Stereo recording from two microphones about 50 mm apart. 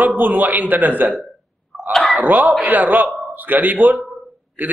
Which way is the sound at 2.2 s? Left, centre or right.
Right.